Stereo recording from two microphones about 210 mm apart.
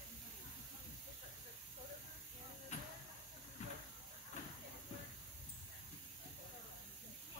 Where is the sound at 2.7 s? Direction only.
35° left (ahead or behind).